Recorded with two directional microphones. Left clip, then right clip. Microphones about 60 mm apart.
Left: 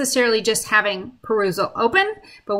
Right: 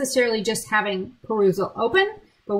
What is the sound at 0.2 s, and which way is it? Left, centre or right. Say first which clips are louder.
A woman's voice: left 4 dB; centre.